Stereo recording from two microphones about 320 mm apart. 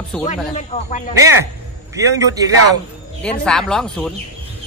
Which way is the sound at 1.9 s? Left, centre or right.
Centre.